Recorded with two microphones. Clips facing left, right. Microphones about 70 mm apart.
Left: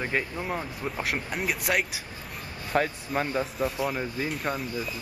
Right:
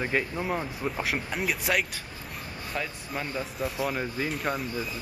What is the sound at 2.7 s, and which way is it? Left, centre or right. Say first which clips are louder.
Speech: left 8 dB; left.